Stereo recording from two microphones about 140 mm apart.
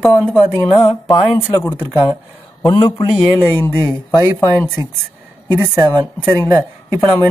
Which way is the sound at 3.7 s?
20° right (ahead or behind).